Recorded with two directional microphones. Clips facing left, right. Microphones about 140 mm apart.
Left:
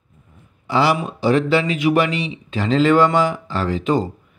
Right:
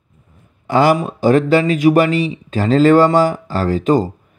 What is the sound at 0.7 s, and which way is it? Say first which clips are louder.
Speech: right 5 dB; 45° right (ahead or behind).